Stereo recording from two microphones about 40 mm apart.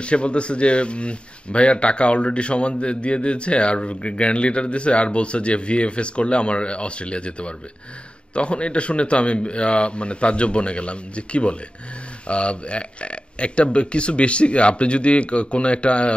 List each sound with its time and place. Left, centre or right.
0.0 s a man's voice: left